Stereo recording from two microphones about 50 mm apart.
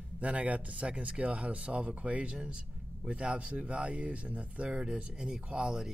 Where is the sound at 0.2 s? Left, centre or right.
Right.